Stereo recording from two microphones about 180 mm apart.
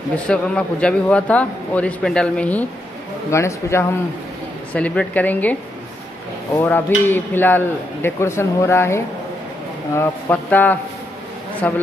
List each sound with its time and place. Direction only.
0.3 s speech: 5° left (ahead or behind)